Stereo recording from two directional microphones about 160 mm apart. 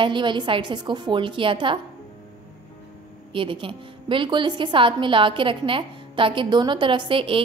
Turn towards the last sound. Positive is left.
turn(degrees=-35)  # may be behind; listen again after turning